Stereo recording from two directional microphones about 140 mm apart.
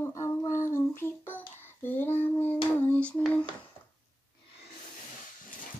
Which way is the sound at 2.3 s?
10° left (ahead or behind).